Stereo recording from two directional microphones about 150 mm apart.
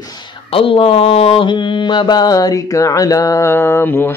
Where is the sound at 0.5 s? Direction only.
40° left (ahead or behind).